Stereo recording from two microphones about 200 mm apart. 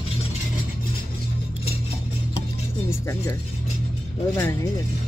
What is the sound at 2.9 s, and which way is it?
Speech, 15° left (ahead or behind).